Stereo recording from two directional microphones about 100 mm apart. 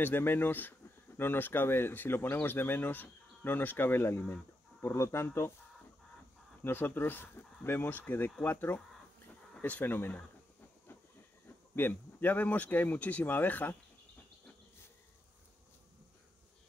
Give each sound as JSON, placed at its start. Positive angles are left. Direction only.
{"t": 0.0, "sound": "speech", "side_deg": 20}
{"t": 6.6, "sound": "speech", "side_deg": 20}
{"t": 11.4, "sound": "speech", "side_deg": 20}